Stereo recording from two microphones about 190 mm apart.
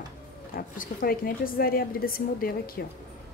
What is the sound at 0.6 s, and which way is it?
A woman's voice, 50° left (ahead or behind).